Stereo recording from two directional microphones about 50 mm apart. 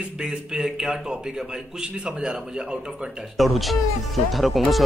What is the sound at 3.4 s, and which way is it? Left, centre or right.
Speech, centre.